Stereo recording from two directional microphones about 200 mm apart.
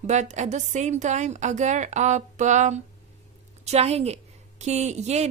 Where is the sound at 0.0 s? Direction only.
35° right (ahead or behind).